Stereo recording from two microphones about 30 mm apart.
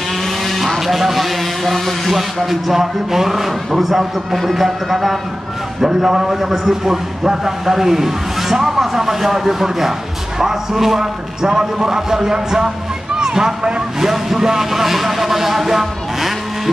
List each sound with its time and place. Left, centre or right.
0.5 s speech: centre
5.8 s a man's voice: centre
11.0 s speech: right
14.0 s a man's voice: centre